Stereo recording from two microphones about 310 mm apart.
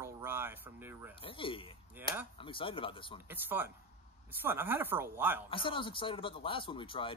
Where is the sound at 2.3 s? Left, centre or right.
Centre.